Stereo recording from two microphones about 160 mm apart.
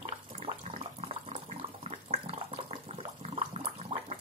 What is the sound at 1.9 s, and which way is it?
Water, 40° right (ahead or behind).